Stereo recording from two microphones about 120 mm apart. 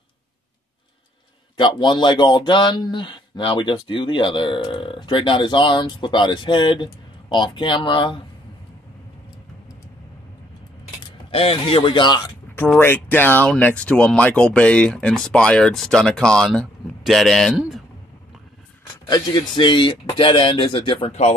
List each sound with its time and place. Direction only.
1.6 s speech: 40° left (ahead or behind)
11.3 s speech: 50° left (ahead or behind)
12.5 s a man's voice: 15° left (ahead or behind); by 17.8 s centre (ahead or behind)
19.0 s speech: 35° left (ahead or behind)